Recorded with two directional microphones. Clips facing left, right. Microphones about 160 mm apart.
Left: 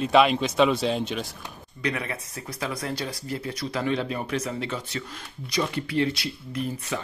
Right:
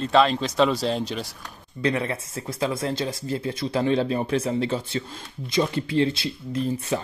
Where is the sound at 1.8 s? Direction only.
30° right (ahead or behind).